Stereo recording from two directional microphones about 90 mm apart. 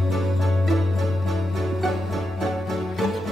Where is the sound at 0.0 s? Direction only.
Centre (ahead or behind).